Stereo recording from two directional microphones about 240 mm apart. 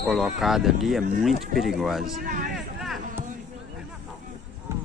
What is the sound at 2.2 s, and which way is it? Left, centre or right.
Speech, right.